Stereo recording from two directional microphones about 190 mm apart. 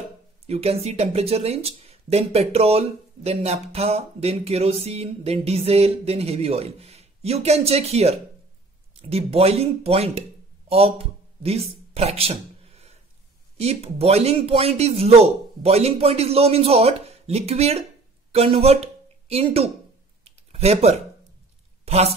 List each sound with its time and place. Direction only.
0.5 s speech: 30° right (ahead or behind)
11.4 s speech: 30° right (ahead or behind)
20.2 s computer keyboard: 35° right (ahead or behind)
21.8 s a woman's voice: 30° right (ahead or behind)